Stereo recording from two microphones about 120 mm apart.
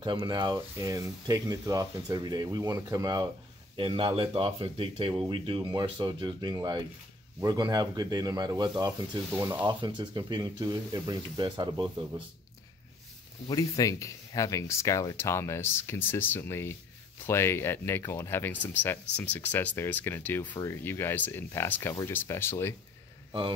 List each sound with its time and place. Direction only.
0.0 s speech: 40° right (ahead or behind)
3.7 s speech: 45° right (ahead or behind)
13.5 s speech: 30° left (ahead or behind)